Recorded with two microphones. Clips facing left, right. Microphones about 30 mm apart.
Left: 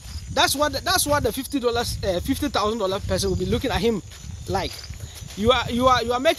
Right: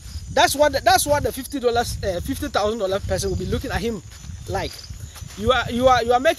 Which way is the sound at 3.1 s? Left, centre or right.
Left.